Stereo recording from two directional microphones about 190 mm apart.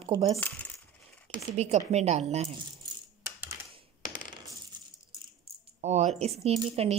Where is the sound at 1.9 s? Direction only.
35° right (ahead or behind).